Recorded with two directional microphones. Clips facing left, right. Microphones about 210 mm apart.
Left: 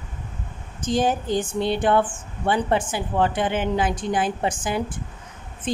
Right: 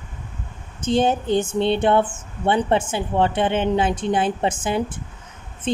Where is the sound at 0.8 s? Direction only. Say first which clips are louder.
Right 3 dB; 25° right (ahead or behind).